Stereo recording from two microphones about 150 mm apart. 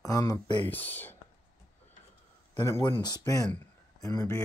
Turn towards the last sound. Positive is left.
turn(degrees=25)  # may be behind; listen again after turning